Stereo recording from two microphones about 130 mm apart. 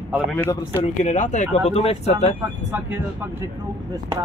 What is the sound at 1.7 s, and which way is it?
Speech, 55° left (ahead or behind).